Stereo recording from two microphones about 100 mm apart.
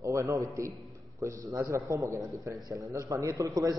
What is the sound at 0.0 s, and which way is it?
A man's voice, 30° right (ahead or behind).